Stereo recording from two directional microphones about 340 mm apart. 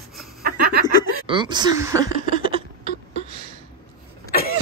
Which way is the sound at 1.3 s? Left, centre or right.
Centre.